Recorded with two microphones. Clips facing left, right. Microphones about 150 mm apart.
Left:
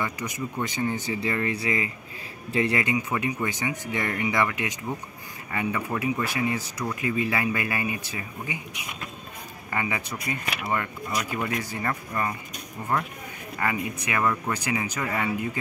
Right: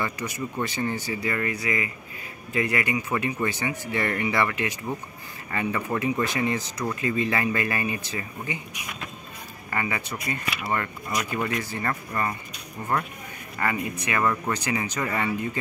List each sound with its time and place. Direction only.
0.0 s speech: 15° left (ahead or behind)
13.6 s speech: 10° left (ahead or behind)